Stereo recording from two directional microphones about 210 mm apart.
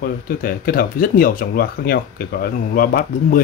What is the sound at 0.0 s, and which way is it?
Speech, 45° left (ahead or behind).